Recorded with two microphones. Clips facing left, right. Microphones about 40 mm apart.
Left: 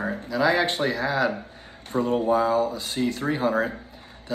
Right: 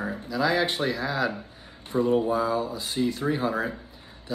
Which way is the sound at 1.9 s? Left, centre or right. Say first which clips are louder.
Left 1 dB; left.